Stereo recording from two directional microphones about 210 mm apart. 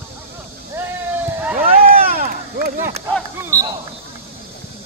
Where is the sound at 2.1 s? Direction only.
45° right (ahead or behind).